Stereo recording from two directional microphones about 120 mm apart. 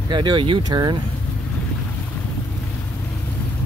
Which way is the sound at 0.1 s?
40° right (ahead or behind).